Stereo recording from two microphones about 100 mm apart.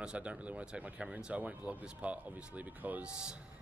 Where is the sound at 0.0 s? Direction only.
10° right (ahead or behind).